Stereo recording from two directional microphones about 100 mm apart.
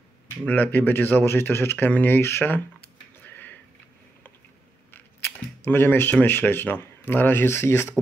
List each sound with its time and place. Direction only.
0.5 s speech: 20° left (ahead or behind)
3.3 s a sound: 20° left (ahead or behind)
5.7 s speech: 20° left (ahead or behind)